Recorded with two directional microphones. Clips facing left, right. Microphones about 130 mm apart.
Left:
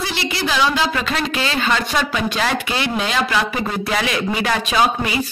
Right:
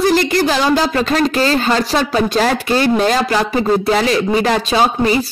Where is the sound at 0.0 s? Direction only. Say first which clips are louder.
Right 10 dB; 45° right (ahead or behind).